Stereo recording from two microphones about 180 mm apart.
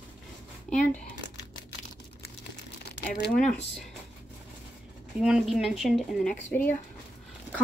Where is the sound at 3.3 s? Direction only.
5° left (ahead or behind).